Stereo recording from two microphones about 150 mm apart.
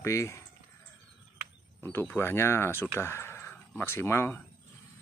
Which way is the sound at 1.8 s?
15° left (ahead or behind).